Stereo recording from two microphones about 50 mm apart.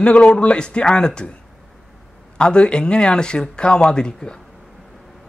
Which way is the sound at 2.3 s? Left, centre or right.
Centre.